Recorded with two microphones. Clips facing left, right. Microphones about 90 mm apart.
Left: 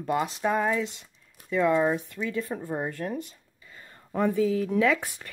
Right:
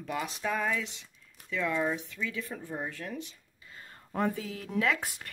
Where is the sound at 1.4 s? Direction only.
40° left (ahead or behind).